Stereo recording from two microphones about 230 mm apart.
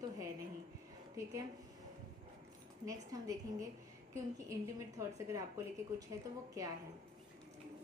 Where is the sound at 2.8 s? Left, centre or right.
Centre.